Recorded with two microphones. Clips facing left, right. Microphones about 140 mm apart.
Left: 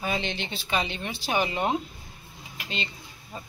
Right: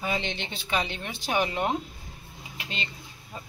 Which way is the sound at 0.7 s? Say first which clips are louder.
Left 1 dB; 15° left (ahead or behind).